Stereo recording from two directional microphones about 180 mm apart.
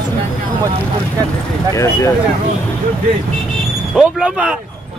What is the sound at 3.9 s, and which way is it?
Speech, 5° right (ahead or behind).